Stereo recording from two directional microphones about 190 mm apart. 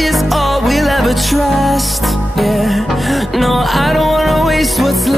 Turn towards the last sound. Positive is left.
turn(degrees=0)  # may be behind; listen again after turning